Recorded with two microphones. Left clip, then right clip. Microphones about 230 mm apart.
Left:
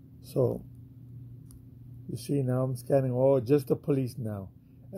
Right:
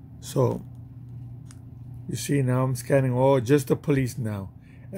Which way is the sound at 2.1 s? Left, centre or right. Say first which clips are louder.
Right 4 dB; centre.